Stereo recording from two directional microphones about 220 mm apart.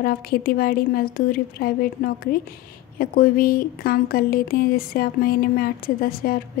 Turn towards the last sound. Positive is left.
turn(degrees=40)  # may be behind; listen again after turning